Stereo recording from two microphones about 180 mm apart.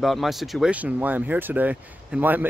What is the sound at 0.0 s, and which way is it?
Speech, centre (ahead or behind).